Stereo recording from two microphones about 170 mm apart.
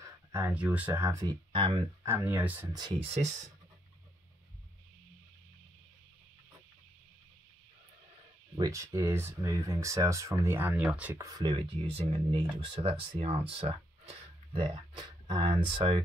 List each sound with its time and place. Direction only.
0.3 s speech: 15° right (ahead or behind)
2.0 s speech: 15° right (ahead or behind)
2.7 s speech: 30° right (ahead or behind)
8.5 s speech: 20° right (ahead or behind)
11.1 s speech: 20° right (ahead or behind)